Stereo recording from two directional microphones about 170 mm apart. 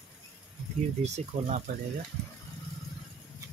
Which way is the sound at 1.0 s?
40° right (ahead or behind).